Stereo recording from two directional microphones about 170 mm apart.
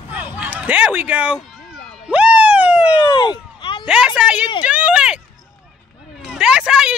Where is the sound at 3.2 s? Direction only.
25° left (ahead or behind).